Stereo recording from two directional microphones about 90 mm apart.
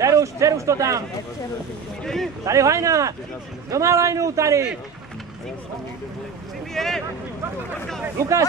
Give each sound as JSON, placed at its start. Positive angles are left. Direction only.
{"t": 0.0, "sound": "a man's voice", "side_deg": -35}
{"t": 2.4, "sound": "a man's voice", "side_deg": -35}
{"t": 6.7, "sound": "speech", "side_deg": 5}
{"t": 8.2, "sound": "a man's voice", "side_deg": -35}